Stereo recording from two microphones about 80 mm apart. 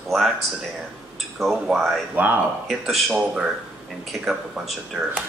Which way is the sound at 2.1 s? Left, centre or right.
Right.